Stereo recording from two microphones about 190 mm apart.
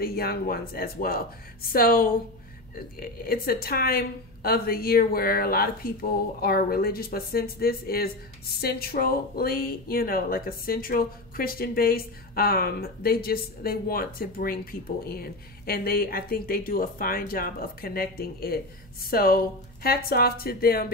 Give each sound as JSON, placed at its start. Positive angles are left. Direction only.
{"t": 0.0, "sound": "speech", "side_deg": 55}